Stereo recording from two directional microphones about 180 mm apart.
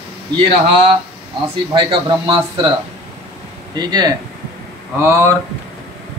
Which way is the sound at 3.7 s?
25° right (ahead or behind).